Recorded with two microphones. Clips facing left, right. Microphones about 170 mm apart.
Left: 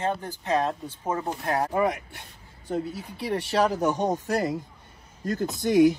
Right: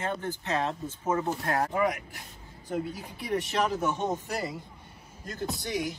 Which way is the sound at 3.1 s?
30° left (ahead or behind).